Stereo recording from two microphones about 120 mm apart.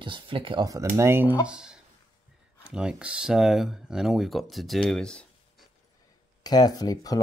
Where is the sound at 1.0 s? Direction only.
20° right (ahead or behind).